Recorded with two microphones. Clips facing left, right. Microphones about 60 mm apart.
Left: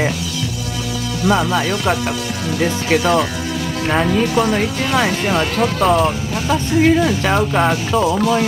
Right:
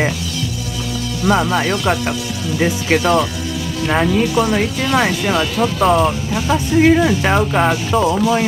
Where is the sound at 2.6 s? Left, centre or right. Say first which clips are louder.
Right 1 dB; centre.